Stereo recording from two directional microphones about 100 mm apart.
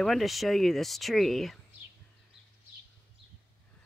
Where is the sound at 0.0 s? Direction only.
Centre (ahead or behind).